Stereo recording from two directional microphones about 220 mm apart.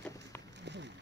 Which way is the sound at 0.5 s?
50° right (ahead or behind).